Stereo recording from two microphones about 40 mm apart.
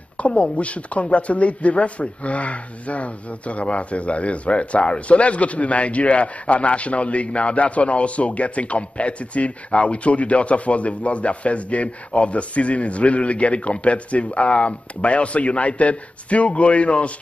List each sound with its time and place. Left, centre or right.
0.2 s speech: left